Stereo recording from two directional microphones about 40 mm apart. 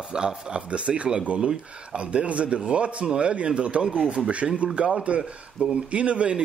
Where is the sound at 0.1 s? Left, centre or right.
Right.